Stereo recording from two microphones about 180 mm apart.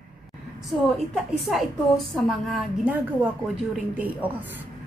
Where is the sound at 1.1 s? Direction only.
Centre (ahead or behind).